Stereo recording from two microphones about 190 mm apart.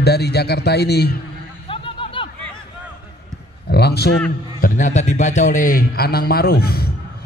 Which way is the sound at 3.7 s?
60° left (ahead or behind).